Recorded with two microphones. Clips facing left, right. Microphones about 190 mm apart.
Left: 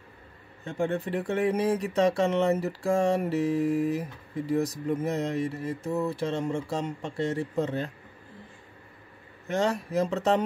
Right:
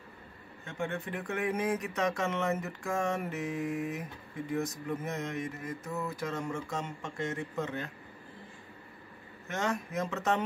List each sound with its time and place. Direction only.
0.7 s speech: 35° left (ahead or behind)
9.5 s speech: 35° left (ahead or behind)